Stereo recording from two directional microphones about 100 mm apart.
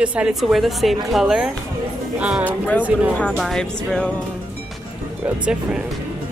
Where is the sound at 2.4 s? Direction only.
15° left (ahead or behind).